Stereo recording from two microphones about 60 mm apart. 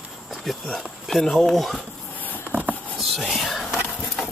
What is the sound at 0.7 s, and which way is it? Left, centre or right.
Speech, centre.